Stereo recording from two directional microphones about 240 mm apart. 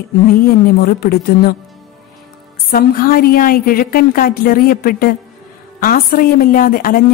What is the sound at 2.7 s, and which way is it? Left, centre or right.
A woman's voice, left.